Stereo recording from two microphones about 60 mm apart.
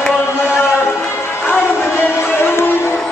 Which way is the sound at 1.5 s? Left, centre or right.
Left.